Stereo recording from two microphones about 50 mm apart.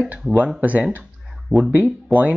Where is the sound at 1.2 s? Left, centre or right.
Centre.